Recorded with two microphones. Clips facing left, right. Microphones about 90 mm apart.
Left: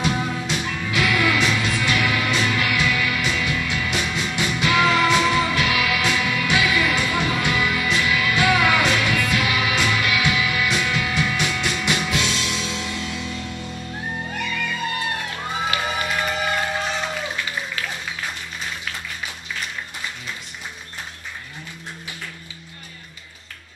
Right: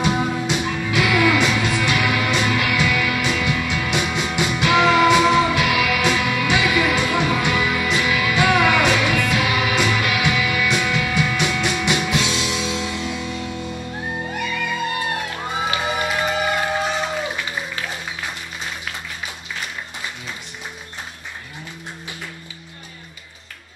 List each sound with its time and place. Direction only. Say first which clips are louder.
0.0 s music: right 3 dB; 15° right (ahead or behind)